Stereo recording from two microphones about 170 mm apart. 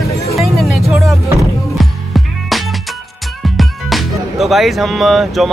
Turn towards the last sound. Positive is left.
turn(degrees=0)  # may be behind; listen again after turning